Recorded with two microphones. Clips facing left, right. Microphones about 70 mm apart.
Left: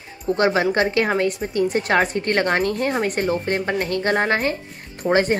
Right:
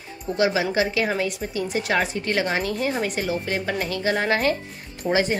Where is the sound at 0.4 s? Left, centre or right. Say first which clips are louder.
Left 2 dB; left.